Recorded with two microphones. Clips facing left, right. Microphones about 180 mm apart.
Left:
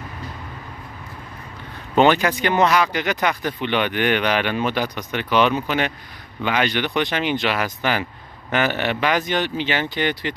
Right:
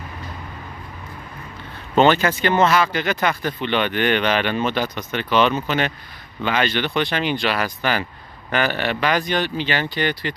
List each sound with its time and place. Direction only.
2.0 s speech: 15° left (ahead or behind)